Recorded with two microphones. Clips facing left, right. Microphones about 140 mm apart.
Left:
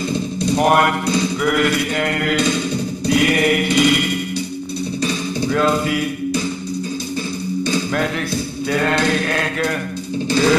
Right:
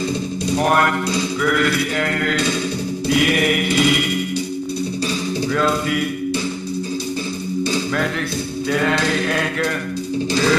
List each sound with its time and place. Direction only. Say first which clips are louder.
0.6 s mantra: left 2 dB; 10° left (ahead or behind)
5.5 s mantra: left 3 dB; 5° left (ahead or behind)
8.7 s mantra: left 2 dB; centre (ahead or behind)